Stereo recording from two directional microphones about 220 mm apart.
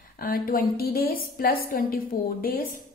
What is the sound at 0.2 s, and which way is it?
A woman's voice, 40° left (ahead or behind).